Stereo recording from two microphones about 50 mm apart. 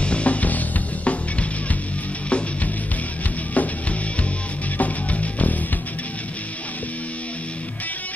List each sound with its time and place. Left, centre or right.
0.0 s music: left
2.2 s music: left
4.7 s music: left